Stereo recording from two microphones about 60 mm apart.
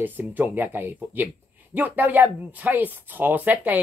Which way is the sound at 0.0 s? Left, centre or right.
Right.